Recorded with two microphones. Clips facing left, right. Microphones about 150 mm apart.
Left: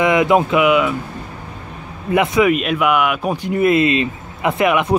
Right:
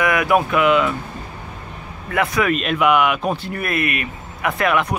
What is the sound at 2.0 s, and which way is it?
Speech, 20° left (ahead or behind).